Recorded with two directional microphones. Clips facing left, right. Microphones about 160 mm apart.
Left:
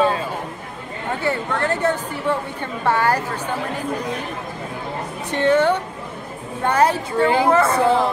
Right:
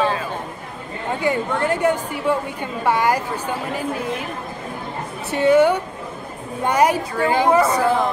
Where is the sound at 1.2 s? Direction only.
10° right (ahead or behind).